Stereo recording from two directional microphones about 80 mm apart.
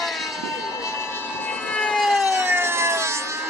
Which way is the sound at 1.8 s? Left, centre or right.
Centre.